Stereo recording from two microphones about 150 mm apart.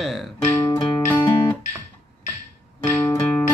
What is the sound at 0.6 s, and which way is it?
Music, 20° left (ahead or behind).